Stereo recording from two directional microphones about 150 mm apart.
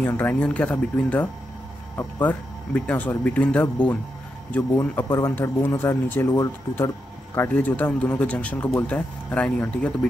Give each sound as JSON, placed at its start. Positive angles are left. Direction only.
{"t": 0.0, "sound": "speech", "side_deg": 10}